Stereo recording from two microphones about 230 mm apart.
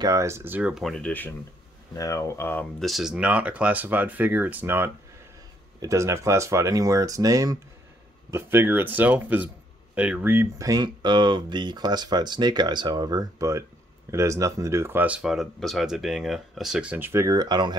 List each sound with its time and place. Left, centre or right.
0.0 s speech: centre